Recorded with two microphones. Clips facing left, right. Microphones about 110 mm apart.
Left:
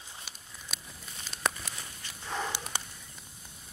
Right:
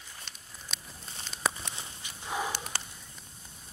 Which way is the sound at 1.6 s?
25° right (ahead or behind).